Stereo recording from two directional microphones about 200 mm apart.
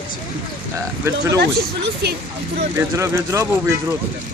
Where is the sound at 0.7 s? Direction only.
15° right (ahead or behind).